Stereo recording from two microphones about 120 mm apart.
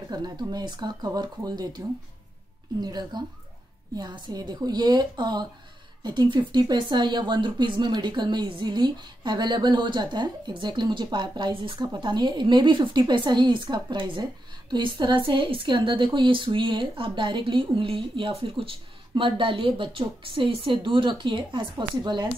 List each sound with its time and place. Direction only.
0.1 s speech: 35° right (ahead or behind)
2.8 s a woman's voice: 35° right (ahead or behind)